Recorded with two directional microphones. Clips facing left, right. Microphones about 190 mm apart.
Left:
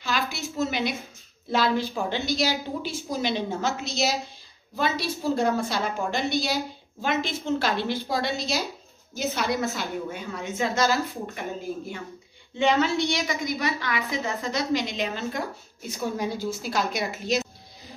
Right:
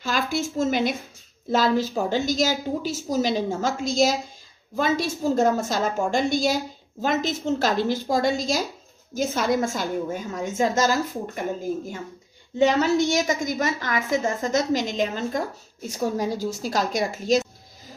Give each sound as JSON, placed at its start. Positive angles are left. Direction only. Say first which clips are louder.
{"t": 0.0, "sound": "a woman's voice", "louder": "right 4 dB", "side_deg": -50}